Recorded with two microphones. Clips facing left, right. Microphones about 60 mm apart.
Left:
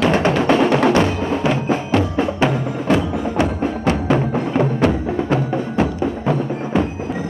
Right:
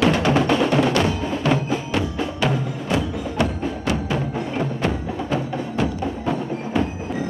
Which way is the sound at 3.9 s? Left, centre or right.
Left.